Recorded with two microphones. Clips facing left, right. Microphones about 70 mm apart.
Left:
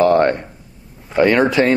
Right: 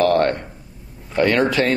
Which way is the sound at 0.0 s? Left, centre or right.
Centre.